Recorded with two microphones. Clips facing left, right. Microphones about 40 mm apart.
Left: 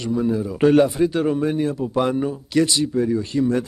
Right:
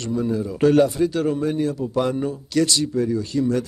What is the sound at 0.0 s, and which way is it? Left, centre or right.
Speech, centre.